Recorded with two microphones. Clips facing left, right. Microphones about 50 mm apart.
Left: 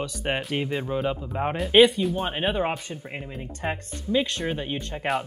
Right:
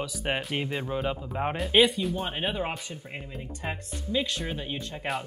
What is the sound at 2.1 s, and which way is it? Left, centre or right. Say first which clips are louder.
Speech: left 4 dB; centre.